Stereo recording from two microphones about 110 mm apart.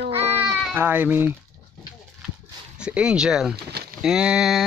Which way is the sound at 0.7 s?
20° right (ahead or behind).